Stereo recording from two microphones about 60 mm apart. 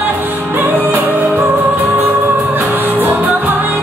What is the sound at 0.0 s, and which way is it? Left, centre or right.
Music, right.